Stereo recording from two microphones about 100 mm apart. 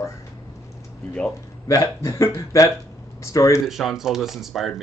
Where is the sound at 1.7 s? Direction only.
35° left (ahead or behind).